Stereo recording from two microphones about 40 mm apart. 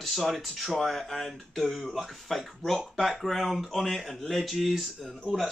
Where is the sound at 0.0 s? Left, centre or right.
Centre.